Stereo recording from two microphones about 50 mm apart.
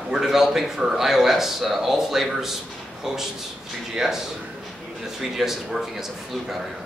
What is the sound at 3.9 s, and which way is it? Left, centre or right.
A man's voice, centre.